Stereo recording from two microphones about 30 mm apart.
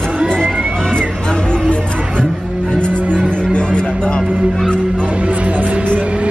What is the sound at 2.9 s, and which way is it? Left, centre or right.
Music, right.